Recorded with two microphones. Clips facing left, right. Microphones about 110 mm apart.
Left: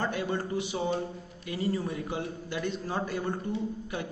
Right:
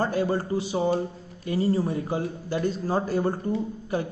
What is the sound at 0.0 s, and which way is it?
Speech, 35° right (ahead or behind).